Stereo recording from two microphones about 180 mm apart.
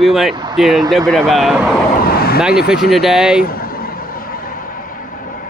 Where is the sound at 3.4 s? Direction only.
55° left (ahead or behind).